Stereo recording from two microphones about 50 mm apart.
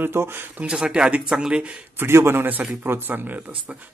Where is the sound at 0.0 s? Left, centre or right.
Right.